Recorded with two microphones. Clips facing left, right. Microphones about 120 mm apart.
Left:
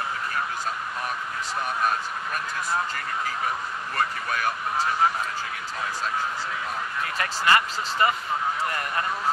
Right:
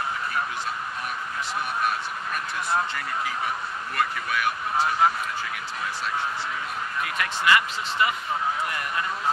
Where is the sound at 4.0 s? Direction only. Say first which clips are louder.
Right 1 dB; 40° left (ahead or behind).